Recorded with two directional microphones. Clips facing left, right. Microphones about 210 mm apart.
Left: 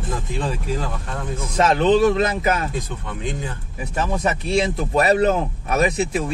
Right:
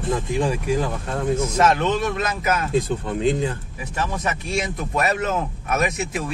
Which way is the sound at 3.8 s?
35° left (ahead or behind).